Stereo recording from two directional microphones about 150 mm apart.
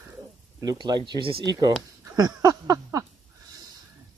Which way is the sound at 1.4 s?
25° right (ahead or behind).